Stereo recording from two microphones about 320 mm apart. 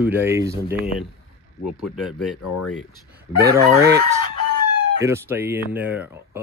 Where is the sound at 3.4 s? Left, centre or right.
Centre.